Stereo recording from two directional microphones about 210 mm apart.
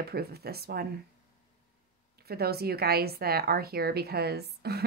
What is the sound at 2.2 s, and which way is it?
A woman's voice, 50° right (ahead or behind).